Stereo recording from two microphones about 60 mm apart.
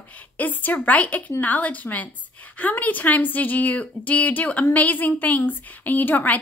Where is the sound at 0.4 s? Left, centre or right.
Left.